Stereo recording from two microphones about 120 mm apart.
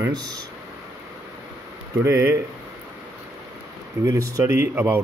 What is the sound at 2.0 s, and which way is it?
Speech, 25° right (ahead or behind).